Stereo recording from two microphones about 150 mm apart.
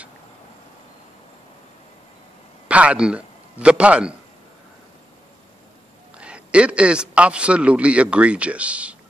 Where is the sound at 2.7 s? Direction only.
10° right (ahead or behind).